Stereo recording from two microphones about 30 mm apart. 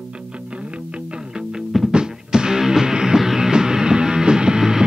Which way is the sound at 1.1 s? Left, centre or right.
Right.